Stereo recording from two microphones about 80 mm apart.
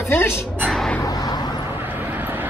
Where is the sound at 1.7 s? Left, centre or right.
Right.